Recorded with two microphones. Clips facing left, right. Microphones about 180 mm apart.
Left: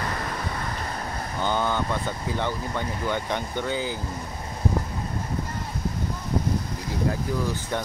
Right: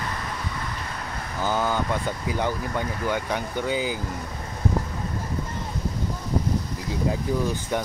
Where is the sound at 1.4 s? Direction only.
5° right (ahead or behind).